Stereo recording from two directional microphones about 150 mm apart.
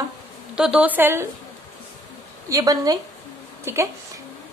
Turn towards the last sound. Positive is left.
turn(degrees=-20)  # may be behind; listen again after turning